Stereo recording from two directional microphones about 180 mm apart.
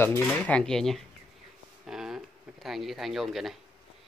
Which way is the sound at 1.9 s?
Centre (ahead or behind).